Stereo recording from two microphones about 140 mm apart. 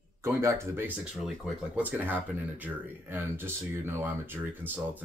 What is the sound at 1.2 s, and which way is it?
Speech, 5° right (ahead or behind).